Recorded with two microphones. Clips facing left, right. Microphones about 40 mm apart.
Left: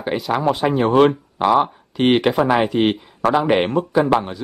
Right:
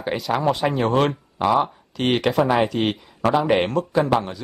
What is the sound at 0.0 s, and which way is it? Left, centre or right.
Speech, centre.